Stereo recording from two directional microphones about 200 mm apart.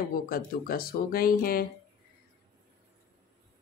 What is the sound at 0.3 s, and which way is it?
A woman's voice, 45° left (ahead or behind).